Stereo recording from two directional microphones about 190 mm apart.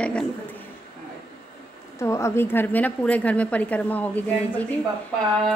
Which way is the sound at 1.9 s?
15° left (ahead or behind).